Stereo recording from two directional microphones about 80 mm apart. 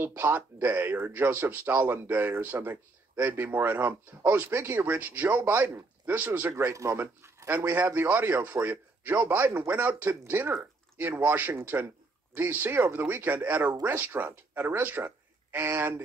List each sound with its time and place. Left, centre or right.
0.0 s speech: right
6.5 s speech: right